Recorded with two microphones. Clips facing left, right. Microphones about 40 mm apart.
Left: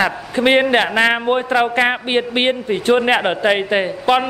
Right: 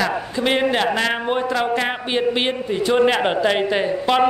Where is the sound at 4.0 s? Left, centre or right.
Centre.